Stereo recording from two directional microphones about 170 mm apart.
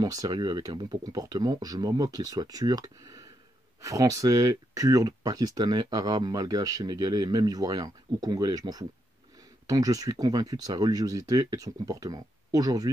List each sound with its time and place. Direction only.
0.0 s speech: 20° right (ahead or behind)